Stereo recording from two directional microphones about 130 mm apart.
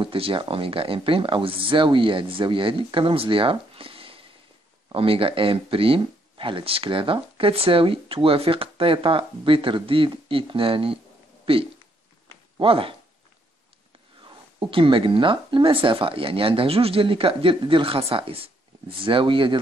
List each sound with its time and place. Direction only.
0.0 s speech: 45° right (ahead or behind)
14.2 s speech: 40° right (ahead or behind)